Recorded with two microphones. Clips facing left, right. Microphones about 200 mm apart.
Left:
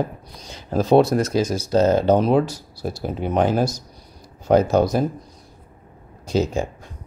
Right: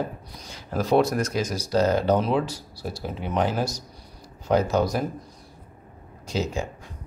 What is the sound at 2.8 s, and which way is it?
Speech, 45° left (ahead or behind).